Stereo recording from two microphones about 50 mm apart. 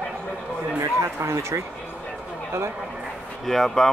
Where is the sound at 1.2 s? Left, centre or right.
Right.